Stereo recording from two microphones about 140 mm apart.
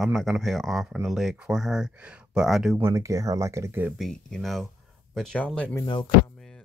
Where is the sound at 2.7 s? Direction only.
20° right (ahead or behind).